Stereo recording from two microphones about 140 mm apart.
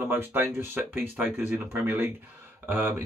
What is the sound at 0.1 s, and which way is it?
Speech, 15° right (ahead or behind).